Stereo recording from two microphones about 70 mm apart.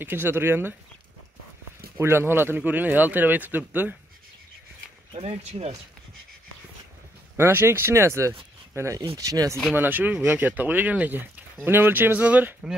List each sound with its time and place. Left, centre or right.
0.0 s speech: right
2.0 s speech: right
7.3 s speech: right
9.8 s speech: right